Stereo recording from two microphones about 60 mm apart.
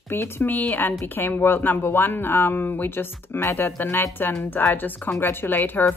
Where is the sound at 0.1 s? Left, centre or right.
Left.